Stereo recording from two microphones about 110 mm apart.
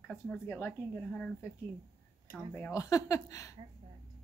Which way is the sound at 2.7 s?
30° left (ahead or behind).